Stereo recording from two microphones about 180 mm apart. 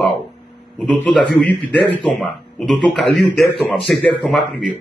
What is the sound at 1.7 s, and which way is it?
Speech, 10° left (ahead or behind).